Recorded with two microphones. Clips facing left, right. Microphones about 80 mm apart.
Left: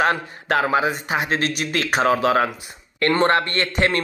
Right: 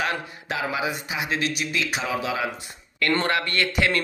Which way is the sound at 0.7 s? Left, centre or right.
Left.